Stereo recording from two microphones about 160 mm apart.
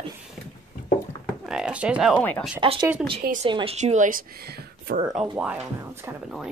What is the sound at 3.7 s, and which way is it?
Speech, 50° right (ahead or behind).